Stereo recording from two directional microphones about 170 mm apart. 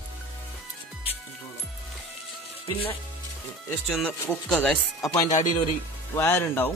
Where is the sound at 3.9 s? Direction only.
Centre (ahead or behind).